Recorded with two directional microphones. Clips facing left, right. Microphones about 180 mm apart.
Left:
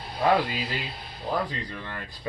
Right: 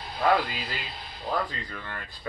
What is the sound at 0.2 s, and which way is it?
Speech, 15° left (ahead or behind).